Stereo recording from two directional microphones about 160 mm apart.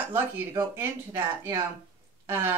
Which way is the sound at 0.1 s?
15° right (ahead or behind).